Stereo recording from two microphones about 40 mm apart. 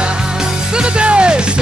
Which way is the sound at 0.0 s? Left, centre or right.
Centre.